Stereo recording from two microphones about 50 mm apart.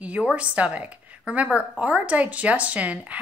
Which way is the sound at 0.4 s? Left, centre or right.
Right.